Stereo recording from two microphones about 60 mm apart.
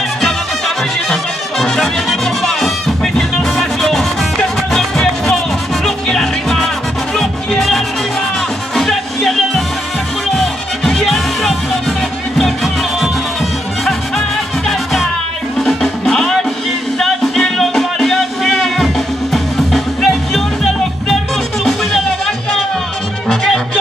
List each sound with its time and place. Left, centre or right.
0.2 s music: centre
14.7 s music: centre